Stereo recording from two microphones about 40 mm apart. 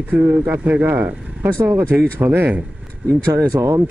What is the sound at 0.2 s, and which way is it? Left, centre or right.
Speech, right.